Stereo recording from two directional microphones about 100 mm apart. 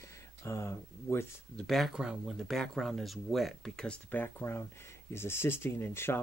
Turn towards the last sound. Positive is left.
turn(degrees=25)  # may be behind; listen again after turning